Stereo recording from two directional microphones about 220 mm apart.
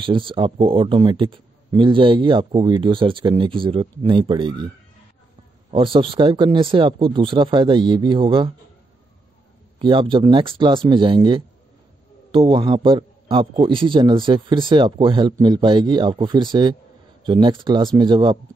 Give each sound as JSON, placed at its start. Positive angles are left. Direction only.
{"t": 0.0, "sound": "a man's voice", "side_deg": -25}
{"t": 5.7, "sound": "a man's voice", "side_deg": -25}
{"t": 9.8, "sound": "a man's voice", "side_deg": -25}